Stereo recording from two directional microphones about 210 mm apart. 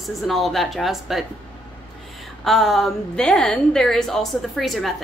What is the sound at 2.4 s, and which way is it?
Speech, centre (ahead or behind).